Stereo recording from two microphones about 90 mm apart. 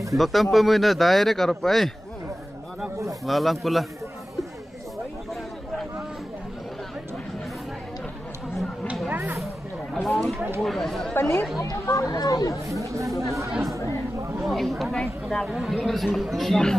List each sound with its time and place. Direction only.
0.1 s speech: centre (ahead or behind)
3.3 s speech: centre (ahead or behind)
9.1 s vehicle: 25° right (ahead or behind)
10.0 s speech: centre (ahead or behind)
11.1 s speech: 25° left (ahead or behind)
11.7 s speech: 35° left (ahead or behind)
12.7 s speech: 35° right (ahead or behind)
14.4 s speech: centre (ahead or behind)
15.4 s speech: 5° right (ahead or behind)